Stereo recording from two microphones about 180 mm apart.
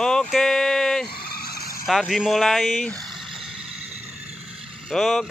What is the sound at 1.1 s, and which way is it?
Vehicle, 60° left (ahead or behind).